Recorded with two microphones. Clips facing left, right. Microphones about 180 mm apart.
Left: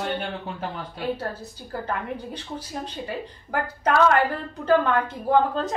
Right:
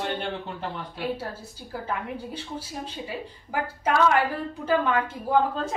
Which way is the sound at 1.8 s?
5° right (ahead or behind).